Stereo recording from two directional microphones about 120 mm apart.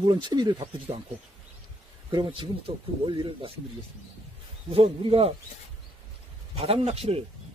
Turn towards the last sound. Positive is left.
turn(degrees=-55)  # may be behind; listen again after turning